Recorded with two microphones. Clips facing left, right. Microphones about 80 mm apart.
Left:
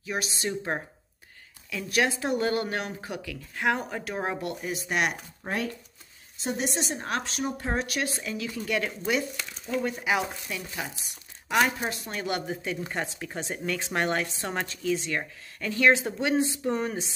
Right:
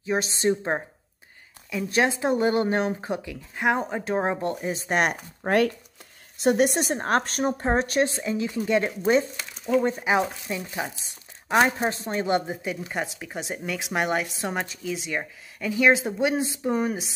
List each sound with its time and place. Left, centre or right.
0.0 s speech: right
6.4 s a woman's voice: right
9.4 s a sound: centre
9.8 s speech: right
11.4 s speech: right
12.6 s speech: centre